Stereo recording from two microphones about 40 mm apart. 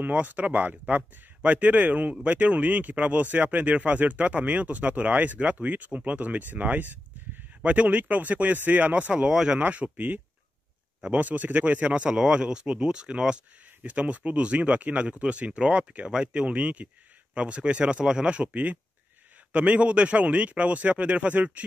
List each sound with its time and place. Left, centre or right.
0.0 s speech: right
9.9 s speech: right
11.1 s speech: right
13.8 s speech: right